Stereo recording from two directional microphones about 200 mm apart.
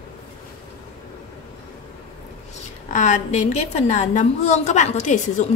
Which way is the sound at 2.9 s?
35° left (ahead or behind).